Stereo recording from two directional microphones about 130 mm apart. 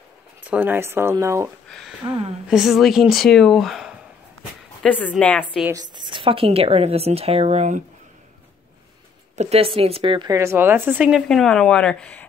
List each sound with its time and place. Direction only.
0.5 s speech: 15° right (ahead or behind)
1.7 s a sound: centre (ahead or behind)
2.0 s speech: 45° right (ahead or behind)
2.5 s speech: centre (ahead or behind)
5.7 s speech: 30° right (ahead or behind); by 7.8 s 60° right (ahead or behind)
9.4 s speech: 50° right (ahead or behind)
10.2 s speech: 25° right (ahead or behind)
11.2 s speech: 5° left (ahead or behind)